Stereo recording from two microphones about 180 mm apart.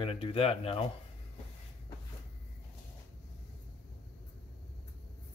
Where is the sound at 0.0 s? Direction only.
30° left (ahead or behind).